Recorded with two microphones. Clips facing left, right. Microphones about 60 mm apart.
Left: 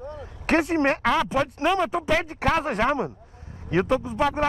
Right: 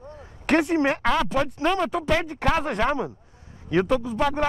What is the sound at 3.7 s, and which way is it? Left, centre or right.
Speech, centre.